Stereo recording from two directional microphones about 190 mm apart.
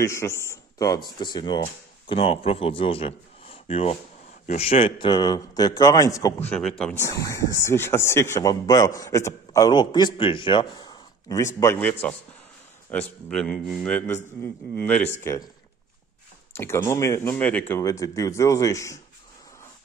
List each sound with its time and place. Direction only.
0.0 s a man's voice: 15° left (ahead or behind)
16.5 s speech: 15° left (ahead or behind)